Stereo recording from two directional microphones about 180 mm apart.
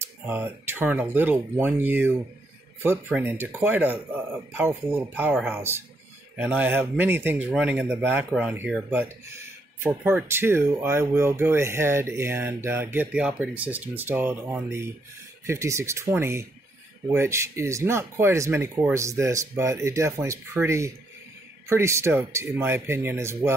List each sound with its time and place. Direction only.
0.0 s speech: 10° right (ahead or behind)